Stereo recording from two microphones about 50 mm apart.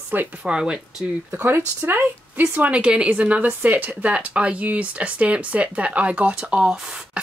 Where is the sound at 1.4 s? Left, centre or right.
Right.